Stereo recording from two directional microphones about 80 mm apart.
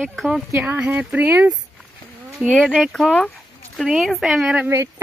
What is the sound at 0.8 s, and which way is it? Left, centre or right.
Speech, centre.